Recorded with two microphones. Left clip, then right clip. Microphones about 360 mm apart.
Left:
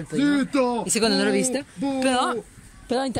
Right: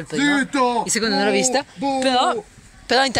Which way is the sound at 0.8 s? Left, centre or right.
Centre.